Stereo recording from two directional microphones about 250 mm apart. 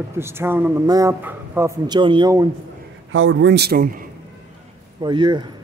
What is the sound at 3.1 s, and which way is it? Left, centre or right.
Speech, right.